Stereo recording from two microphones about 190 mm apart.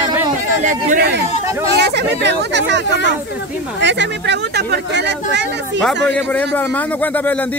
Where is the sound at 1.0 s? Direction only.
60° right (ahead or behind).